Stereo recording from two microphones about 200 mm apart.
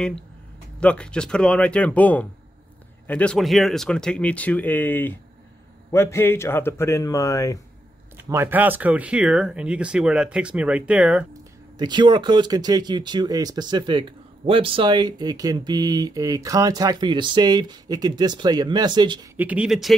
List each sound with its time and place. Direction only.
0.7 s speech: 5° left (ahead or behind)
8.3 s speech: 10° right (ahead or behind)
11.8 s speech: 20° right (ahead or behind)
19.3 s speech: 5° right (ahead or behind)